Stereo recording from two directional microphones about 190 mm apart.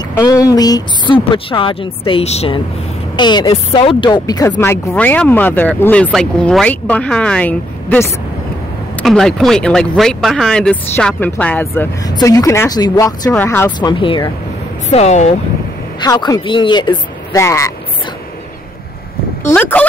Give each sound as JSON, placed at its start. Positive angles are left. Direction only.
{"t": 0.2, "sound": "a woman's voice", "side_deg": 20}
{"t": 13.7, "sound": "a woman's voice", "side_deg": 25}
{"t": 16.0, "sound": "a woman's voice", "side_deg": 20}
{"t": 19.4, "sound": "speech", "side_deg": 10}